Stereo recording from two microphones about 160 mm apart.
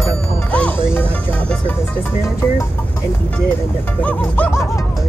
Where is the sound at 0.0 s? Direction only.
10° left (ahead or behind).